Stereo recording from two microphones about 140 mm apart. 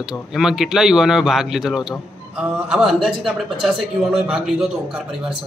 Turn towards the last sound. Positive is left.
turn(degrees=-5)  # may be behind; listen again after turning